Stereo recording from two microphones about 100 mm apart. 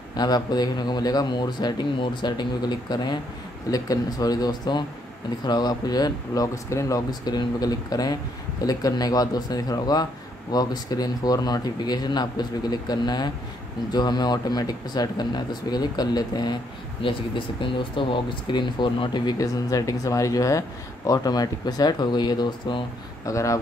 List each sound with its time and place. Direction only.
0.1 s speech: 45° left (ahead or behind)
7.1 s speech: 45° left (ahead or behind)
17.0 s speech: 60° left (ahead or behind)
19.3 s speech: 35° left (ahead or behind)
23.2 s speech: 35° left (ahead or behind)